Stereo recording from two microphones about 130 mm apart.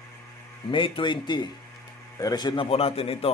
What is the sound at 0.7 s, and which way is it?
A man's voice, 40° left (ahead or behind).